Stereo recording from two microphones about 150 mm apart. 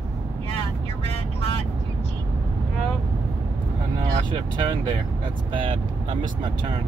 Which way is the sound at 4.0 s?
30° right (ahead or behind).